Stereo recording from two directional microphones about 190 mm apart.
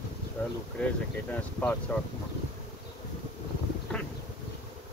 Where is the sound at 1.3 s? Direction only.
10° left (ahead or behind).